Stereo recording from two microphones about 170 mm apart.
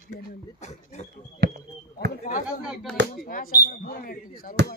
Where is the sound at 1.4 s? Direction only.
70° right (ahead or behind).